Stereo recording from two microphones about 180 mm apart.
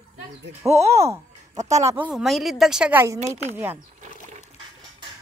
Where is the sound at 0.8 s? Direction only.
15° right (ahead or behind).